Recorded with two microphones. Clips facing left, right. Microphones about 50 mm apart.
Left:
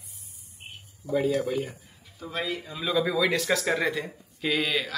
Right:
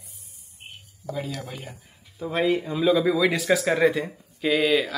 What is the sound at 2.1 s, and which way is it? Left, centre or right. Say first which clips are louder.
Speech: right 9 dB; right.